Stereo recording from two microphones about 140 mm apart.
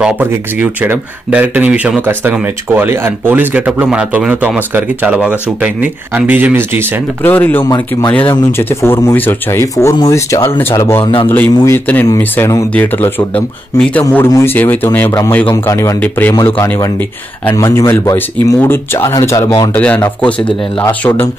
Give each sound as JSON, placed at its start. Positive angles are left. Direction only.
{"t": 0.0, "sound": "speech", "side_deg": -15}
{"t": 7.2, "sound": "speech", "side_deg": 15}
{"t": 7.6, "sound": "speech", "side_deg": 30}
{"t": 8.1, "sound": "speech", "side_deg": 15}
{"t": 19.7, "sound": "speech", "side_deg": 10}